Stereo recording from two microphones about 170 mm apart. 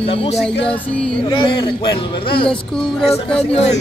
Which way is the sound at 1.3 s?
30° left (ahead or behind).